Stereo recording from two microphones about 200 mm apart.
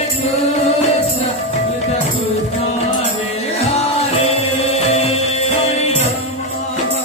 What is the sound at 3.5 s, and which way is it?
Music, 30° left (ahead or behind).